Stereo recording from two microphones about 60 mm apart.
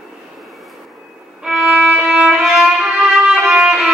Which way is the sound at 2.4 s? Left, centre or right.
Centre.